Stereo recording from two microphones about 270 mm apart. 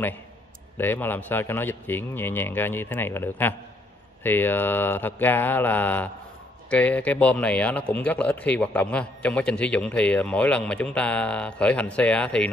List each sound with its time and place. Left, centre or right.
0.7 s a man's voice: centre